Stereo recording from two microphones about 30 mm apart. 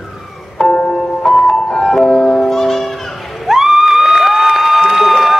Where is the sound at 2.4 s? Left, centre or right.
Centre.